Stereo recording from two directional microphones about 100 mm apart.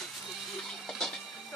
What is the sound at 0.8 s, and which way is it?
Music, 5° left (ahead or behind).